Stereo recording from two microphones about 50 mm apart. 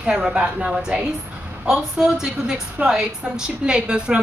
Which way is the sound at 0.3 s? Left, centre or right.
Right.